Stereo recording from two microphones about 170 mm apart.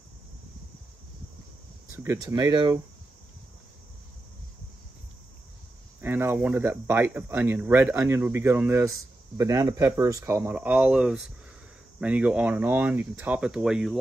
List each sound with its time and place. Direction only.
1.9 s speech: 15° right (ahead or behind)
5.9 s speech: 10° right (ahead or behind)